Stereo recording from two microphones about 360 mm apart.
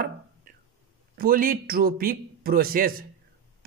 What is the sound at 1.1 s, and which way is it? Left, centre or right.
Speech, right.